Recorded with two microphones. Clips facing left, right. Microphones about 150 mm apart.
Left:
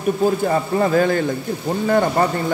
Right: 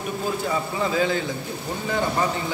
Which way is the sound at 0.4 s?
50° left (ahead or behind).